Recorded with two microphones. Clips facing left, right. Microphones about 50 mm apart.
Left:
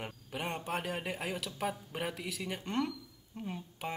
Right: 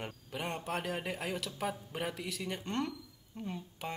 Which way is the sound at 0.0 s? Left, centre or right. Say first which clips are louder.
Even; centre.